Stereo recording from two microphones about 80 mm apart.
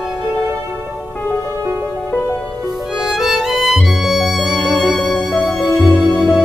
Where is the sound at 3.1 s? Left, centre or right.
Centre.